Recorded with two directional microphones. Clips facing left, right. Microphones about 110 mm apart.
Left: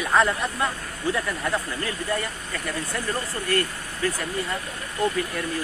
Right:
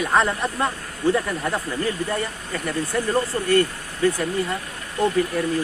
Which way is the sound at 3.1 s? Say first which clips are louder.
Right 6 dB; 25° right (ahead or behind).